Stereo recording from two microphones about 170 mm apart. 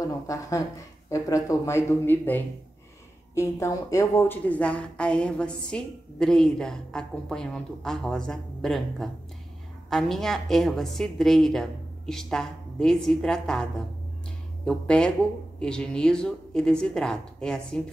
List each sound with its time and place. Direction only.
0.0 s a woman's voice: 20° left (ahead or behind)